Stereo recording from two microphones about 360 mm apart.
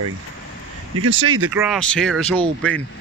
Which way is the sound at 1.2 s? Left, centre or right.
Right.